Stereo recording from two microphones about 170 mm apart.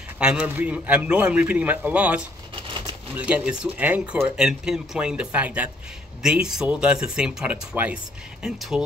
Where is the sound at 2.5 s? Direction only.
30° right (ahead or behind).